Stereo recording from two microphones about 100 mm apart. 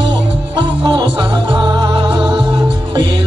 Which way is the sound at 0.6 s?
50° right (ahead or behind).